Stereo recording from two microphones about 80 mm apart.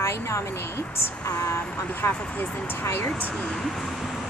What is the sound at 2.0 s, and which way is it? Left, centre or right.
A woman's voice, left.